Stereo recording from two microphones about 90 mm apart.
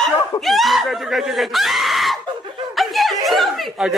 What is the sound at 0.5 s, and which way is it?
Speech, centre (ahead or behind).